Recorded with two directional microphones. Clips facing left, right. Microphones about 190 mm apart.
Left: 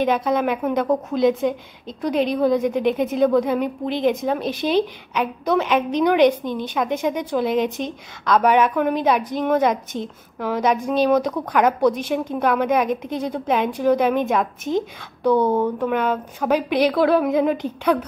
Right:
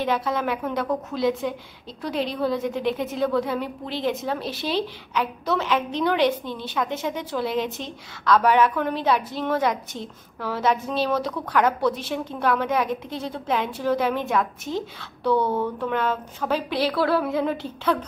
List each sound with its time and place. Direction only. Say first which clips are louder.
0.0 s a woman's voice: left 5 dB; 20° left (ahead or behind)